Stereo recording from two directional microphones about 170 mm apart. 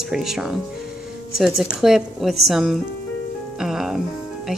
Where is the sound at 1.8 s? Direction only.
Centre (ahead or behind).